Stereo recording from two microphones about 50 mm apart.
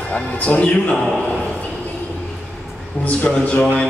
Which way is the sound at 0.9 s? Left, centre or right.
Centre.